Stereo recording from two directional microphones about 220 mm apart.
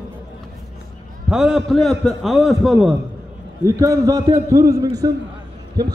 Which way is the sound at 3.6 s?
15° right (ahead or behind).